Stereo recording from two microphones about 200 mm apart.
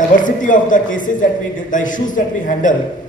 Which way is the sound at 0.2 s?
40° left (ahead or behind).